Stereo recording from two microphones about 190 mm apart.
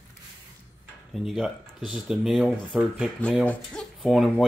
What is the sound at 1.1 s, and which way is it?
Speech, centre (ahead or behind).